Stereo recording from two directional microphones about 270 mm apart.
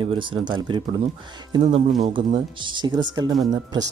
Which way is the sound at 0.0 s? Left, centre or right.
Centre.